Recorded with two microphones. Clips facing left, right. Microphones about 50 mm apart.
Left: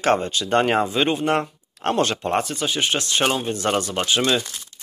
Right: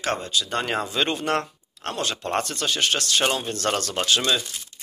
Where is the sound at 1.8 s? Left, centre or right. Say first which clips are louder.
Left 7 dB; left.